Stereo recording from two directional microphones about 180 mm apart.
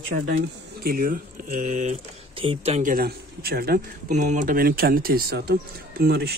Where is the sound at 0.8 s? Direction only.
55° right (ahead or behind).